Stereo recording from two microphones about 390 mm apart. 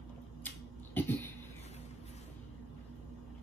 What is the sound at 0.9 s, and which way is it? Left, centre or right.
Cough, centre.